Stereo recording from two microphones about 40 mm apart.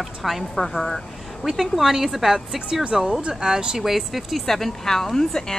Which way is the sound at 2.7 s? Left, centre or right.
Right.